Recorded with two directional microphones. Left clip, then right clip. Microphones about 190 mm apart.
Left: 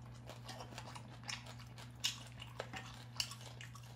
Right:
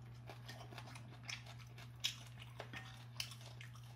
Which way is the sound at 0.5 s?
15° left (ahead or behind).